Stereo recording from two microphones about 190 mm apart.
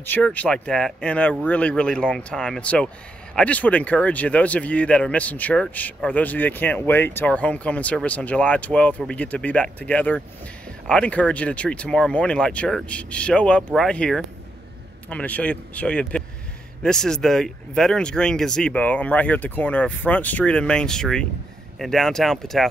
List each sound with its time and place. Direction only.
0.0 s speech: 10° left (ahead or behind)